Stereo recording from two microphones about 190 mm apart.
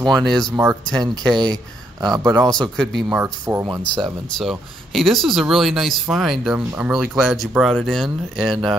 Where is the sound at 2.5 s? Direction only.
5° left (ahead or behind).